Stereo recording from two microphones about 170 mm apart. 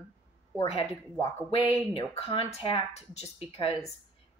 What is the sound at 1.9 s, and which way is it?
Speech, 35° left (ahead or behind).